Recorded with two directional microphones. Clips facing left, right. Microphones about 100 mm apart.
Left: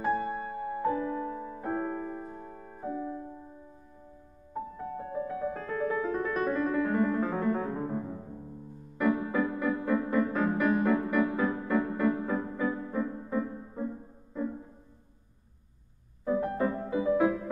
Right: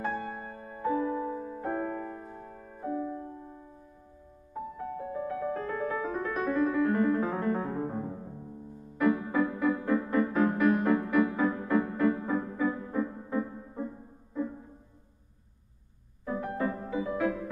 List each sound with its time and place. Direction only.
0.0 s music: 5° left (ahead or behind)
0.8 s music: 5° right (ahead or behind)
1.6 s music: 5° left (ahead or behind)
4.7 s music: centre (ahead or behind)
8.9 s music: centre (ahead or behind)
16.3 s music: 20° left (ahead or behind)